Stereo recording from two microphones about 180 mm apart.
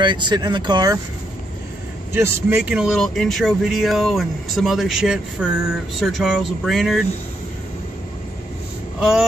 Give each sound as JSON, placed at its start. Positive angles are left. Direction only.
{"t": 0.0, "sound": "speech", "side_deg": -25}
{"t": 2.1, "sound": "speech", "side_deg": -10}